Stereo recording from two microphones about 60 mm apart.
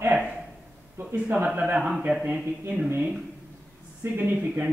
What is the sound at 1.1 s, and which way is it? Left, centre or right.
Speech, right.